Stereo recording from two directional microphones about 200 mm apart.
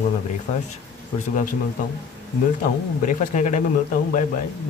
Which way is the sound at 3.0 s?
40° left (ahead or behind).